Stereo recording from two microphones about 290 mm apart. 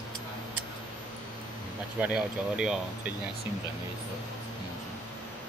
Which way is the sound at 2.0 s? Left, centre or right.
Centre.